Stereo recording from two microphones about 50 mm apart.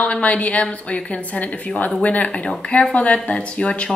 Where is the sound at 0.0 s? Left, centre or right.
Left.